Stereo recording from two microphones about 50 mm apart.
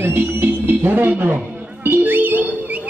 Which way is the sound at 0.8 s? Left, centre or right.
Right.